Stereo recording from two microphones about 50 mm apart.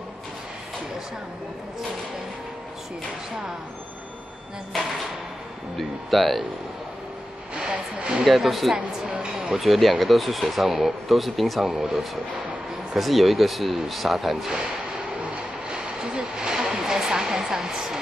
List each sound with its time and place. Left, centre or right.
5.8 s speech: centre
7.5 s speech: right
8.2 s speech: centre
9.6 s speech: centre
15.3 s a sound: right